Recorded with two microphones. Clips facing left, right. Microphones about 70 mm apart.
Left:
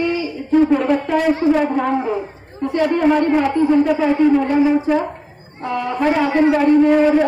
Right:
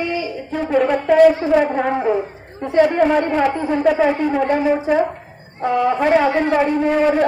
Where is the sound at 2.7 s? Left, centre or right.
Centre.